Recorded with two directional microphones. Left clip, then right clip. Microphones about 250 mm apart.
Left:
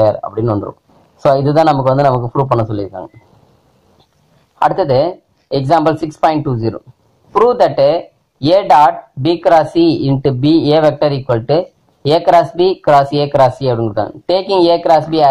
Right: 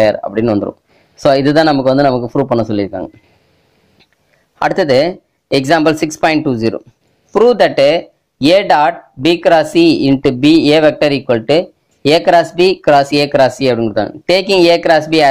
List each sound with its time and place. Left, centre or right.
0.1 s speech: right
1.6 s speech: right
2.7 s speech: right
4.7 s speech: right